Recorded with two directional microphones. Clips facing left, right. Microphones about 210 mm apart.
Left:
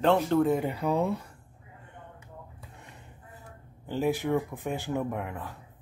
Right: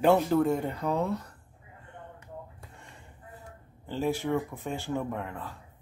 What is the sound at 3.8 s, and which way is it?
Speech, 15° left (ahead or behind).